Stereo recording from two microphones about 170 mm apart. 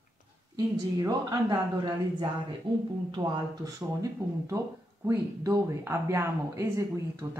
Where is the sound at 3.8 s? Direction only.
20° right (ahead or behind).